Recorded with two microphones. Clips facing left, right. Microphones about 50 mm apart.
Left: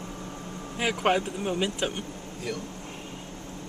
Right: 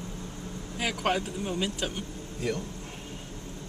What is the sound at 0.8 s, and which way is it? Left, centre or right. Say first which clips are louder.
Speech: left 4 dB; centre.